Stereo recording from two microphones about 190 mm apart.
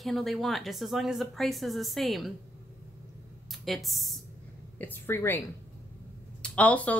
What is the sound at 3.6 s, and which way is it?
Speech, centre (ahead or behind).